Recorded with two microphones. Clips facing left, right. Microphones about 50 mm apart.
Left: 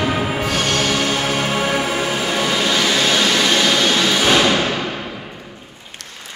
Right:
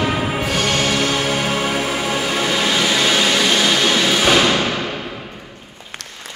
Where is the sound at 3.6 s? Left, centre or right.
Centre.